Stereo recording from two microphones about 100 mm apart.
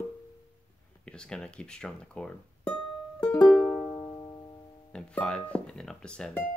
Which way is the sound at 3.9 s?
35° left (ahead or behind).